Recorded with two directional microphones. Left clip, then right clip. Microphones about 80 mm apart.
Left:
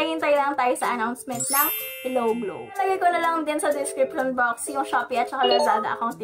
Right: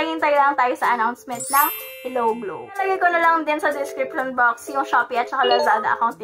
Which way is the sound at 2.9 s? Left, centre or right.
Left.